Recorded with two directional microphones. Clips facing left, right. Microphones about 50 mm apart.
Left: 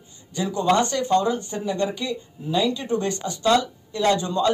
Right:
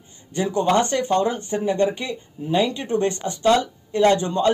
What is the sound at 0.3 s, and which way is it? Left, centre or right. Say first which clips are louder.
Speech: right 1 dB; right.